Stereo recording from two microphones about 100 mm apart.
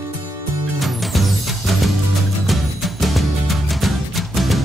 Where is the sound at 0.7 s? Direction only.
Centre (ahead or behind).